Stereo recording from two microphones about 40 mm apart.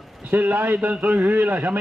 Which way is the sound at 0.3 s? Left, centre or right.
Right.